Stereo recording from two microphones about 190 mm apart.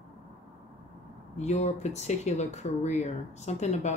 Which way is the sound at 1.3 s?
35° left (ahead or behind).